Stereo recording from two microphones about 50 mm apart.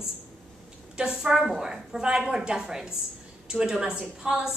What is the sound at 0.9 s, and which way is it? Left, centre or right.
A woman's voice, centre.